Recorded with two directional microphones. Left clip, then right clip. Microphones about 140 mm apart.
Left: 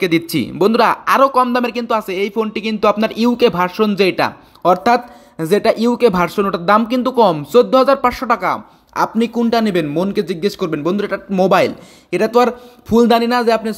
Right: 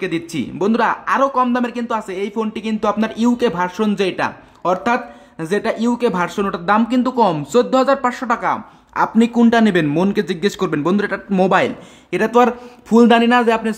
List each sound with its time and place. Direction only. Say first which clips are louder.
0.0 s speech: left 6 dB; 20° left (ahead or behind)
9.5 s speech: right 1 dB; centre (ahead or behind)
11.1 s speech: left 5 dB; 10° left (ahead or behind)